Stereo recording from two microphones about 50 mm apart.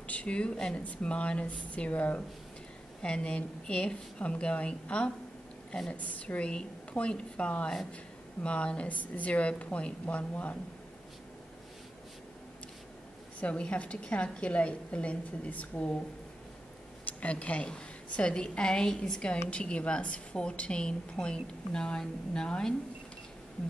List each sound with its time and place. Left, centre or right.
0.0 s a woman's voice: left
3.0 s a woman's voice: left
13.4 s a woman's voice: left
17.0 s a woman's voice: left